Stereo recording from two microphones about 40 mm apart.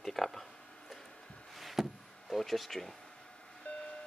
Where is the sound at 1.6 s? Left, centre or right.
Centre.